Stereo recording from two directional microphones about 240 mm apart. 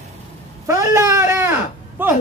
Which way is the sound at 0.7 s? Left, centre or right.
Centre.